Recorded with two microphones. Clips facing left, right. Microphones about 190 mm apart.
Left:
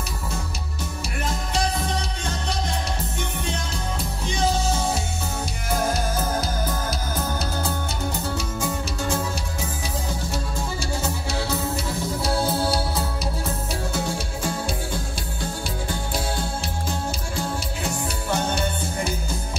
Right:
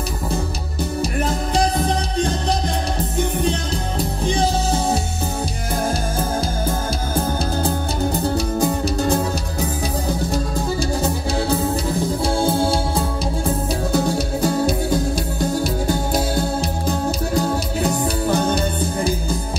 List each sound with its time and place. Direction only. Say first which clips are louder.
1.5 s music: right 5 dB; 35° right (ahead or behind)
7.2 s music: right 9 dB; 30° right (ahead or behind)